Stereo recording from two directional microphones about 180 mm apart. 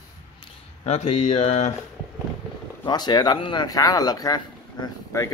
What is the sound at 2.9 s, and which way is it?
Speech, 25° left (ahead or behind).